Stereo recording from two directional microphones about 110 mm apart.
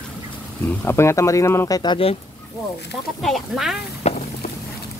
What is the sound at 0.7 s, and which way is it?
Speech, 20° left (ahead or behind).